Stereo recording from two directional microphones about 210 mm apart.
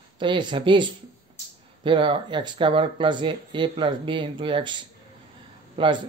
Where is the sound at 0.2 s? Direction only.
20° right (ahead or behind).